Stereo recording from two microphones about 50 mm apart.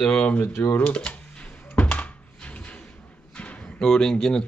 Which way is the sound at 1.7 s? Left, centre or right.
Left.